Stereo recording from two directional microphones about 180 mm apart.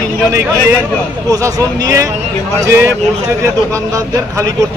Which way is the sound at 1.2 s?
20° right (ahead or behind).